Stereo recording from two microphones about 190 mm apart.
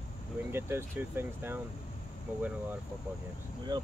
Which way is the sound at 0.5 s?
10° right (ahead or behind).